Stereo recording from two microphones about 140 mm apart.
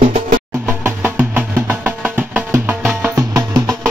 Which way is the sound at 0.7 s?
15° right (ahead or behind).